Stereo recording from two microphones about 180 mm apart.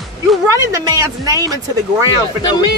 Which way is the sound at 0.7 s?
20° right (ahead or behind).